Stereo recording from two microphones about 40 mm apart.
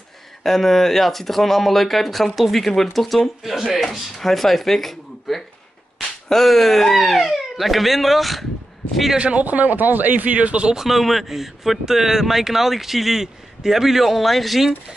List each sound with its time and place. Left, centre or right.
0.4 s speech: centre
9.2 s a man's voice: right
10.7 s speech: centre